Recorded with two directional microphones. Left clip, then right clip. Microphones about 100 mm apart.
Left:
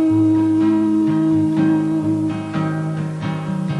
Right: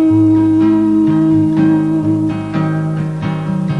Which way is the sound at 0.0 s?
30° left (ahead or behind).